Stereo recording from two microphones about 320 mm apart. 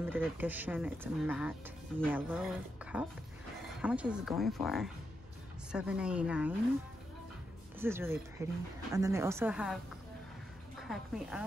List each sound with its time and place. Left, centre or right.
0.0 s speech: centre
7.8 s a woman's voice: centre
10.8 s speech: centre